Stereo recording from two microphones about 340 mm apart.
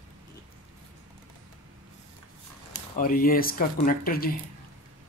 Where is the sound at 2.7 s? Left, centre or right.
Left.